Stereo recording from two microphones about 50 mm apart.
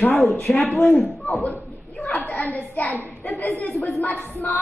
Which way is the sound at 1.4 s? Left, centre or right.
Left.